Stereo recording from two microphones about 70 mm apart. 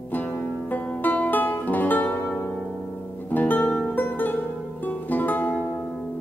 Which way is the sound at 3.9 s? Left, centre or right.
Left.